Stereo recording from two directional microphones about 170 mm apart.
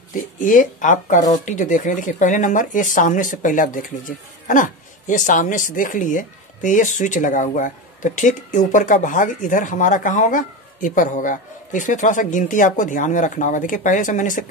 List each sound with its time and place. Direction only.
0.1 s speech: 50° left (ahead or behind)